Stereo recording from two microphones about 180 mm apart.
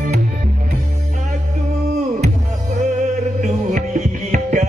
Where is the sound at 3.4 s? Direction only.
40° right (ahead or behind).